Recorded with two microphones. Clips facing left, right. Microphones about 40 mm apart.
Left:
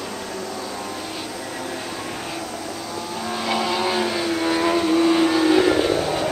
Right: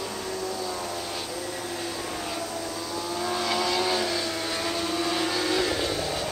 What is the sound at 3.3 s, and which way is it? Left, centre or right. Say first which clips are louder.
Vehicle: left 4 dB; centre.